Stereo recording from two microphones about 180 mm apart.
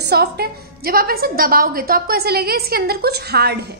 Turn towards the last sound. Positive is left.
turn(degrees=-65)  # may be behind; listen again after turning